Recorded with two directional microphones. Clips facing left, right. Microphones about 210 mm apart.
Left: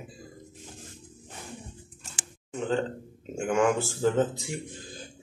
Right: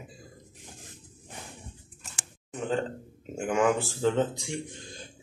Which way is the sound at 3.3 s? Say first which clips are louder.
Left 1 dB; centre (ahead or behind).